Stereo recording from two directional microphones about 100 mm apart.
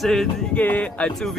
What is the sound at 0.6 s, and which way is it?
Speech, 15° left (ahead or behind).